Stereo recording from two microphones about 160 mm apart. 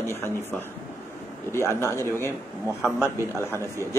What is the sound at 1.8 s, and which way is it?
Speech, 15° left (ahead or behind).